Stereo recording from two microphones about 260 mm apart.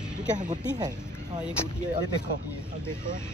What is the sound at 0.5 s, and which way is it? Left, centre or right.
Speech, centre.